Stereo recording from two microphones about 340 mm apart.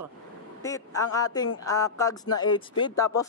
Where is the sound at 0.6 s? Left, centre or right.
Centre.